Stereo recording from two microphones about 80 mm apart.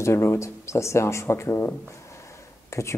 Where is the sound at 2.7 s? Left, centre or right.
Left.